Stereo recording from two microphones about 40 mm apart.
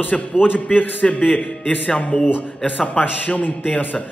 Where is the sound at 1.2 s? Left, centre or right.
Centre.